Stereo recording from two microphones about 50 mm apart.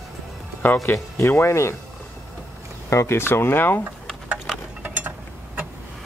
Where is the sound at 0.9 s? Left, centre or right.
Left.